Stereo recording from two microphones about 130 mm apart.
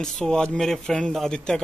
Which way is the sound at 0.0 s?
5° left (ahead or behind).